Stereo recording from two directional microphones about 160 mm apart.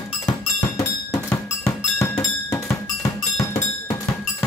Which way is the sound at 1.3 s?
20° left (ahead or behind).